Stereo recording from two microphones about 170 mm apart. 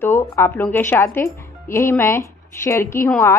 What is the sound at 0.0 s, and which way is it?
Speech, 15° left (ahead or behind).